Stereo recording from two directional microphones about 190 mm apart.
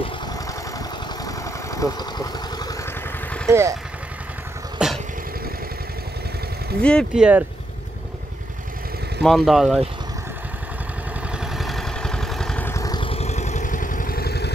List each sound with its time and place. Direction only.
1.2 s vehicle: 15° left (ahead or behind)
3.4 s speech: 15° right (ahead or behind)
4.7 s dog: centre (ahead or behind)
6.8 s speech: 5° left (ahead or behind)
9.2 s speech: centre (ahead or behind)
11.3 s vehicle: centre (ahead or behind); by 14.5 s 55° left (ahead or behind)